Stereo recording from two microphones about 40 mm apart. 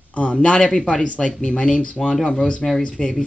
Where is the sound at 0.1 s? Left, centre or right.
Left.